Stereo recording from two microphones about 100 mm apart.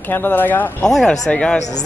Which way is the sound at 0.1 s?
20° left (ahead or behind).